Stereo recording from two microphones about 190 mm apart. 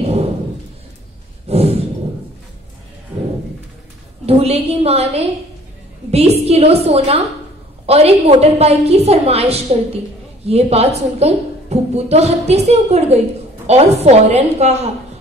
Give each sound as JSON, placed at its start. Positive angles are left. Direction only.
{"t": 0.0, "sound": "a sound", "side_deg": -35}
{"t": 1.5, "sound": "sigh", "side_deg": -35}
{"t": 4.3, "sound": "a woman's voice", "side_deg": -30}